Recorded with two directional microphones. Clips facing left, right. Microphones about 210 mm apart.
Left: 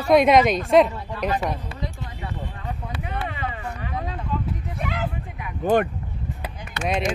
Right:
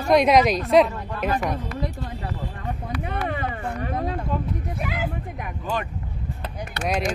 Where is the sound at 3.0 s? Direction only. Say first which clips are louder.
Right 3 dB; 50° right (ahead or behind).